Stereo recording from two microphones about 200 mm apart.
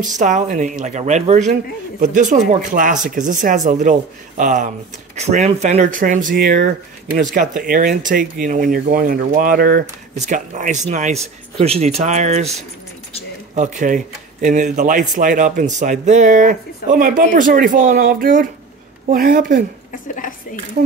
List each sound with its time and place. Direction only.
0.0 s speech: 40° right (ahead or behind)
19.9 s a woman's voice: 45° left (ahead or behind)